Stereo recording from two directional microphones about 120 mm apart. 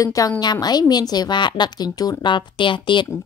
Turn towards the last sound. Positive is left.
turn(degrees=40)  # may be behind; listen again after turning